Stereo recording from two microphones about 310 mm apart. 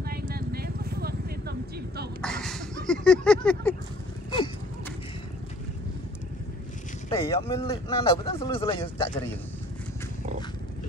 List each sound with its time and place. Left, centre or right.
0.3 s vehicle: right
2.2 s a sound: centre
7.1 s speech: centre